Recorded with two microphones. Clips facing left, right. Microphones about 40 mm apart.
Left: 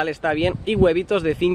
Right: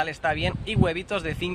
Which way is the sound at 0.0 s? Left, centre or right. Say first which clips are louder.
Left 5 dB; centre.